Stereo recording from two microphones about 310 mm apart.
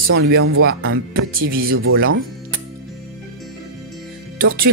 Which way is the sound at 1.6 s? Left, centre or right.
Right.